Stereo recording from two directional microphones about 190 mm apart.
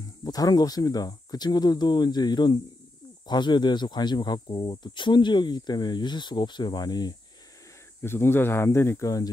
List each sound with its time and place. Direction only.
0.2 s speech: 20° left (ahead or behind)